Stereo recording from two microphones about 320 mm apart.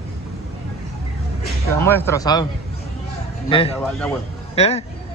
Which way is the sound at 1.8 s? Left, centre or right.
Centre.